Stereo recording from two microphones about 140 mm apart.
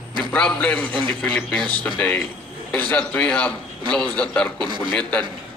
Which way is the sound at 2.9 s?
10° left (ahead or behind).